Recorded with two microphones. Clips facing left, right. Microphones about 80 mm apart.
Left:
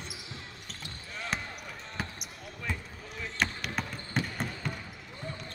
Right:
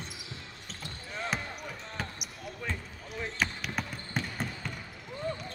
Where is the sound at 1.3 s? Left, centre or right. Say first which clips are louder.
Right 1 dB; centre.